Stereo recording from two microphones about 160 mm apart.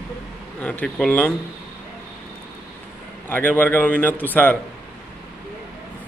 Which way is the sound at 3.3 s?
10° left (ahead or behind).